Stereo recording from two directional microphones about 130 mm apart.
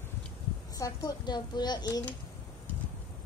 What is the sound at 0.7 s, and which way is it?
A woman's voice, 30° left (ahead or behind).